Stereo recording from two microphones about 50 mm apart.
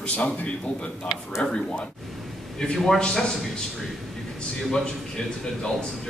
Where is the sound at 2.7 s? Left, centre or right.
Centre.